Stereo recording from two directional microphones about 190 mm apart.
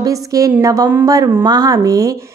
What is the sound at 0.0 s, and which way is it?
A woman's voice, 20° right (ahead or behind).